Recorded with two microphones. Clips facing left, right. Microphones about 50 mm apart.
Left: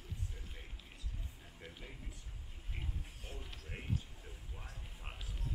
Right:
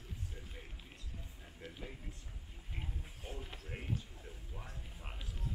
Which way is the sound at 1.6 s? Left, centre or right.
Centre.